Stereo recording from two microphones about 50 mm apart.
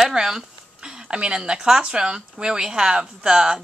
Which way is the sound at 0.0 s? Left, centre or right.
Centre.